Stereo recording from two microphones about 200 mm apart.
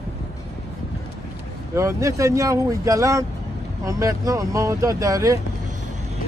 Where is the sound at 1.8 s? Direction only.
15° right (ahead or behind).